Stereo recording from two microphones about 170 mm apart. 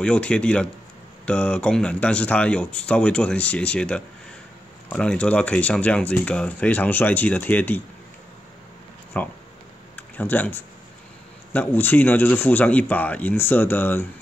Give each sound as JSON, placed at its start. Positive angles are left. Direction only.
{"t": 0.0, "sound": "speech", "side_deg": 5}
{"t": 9.1, "sound": "speech", "side_deg": 10}